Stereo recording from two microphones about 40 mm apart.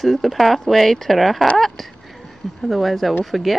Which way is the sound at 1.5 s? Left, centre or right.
Centre.